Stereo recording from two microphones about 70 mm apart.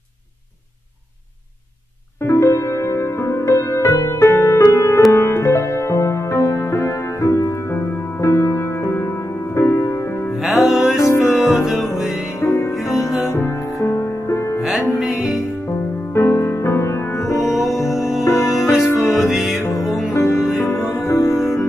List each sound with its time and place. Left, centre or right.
2.2 s music: left
10.4 s music: centre
12.4 s music: left
13.0 s music: centre
13.8 s music: left
15.0 s music: centre
15.7 s music: left
17.5 s music: centre
18.2 s music: left
18.5 s music: centre
20.1 s music: left